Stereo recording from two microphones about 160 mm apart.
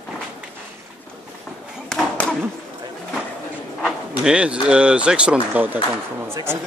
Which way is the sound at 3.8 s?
Centre (ahead or behind).